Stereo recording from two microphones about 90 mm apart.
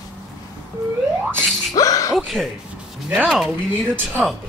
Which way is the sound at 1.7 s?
40° left (ahead or behind).